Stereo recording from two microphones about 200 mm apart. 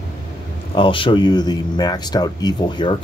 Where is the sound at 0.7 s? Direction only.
25° left (ahead or behind).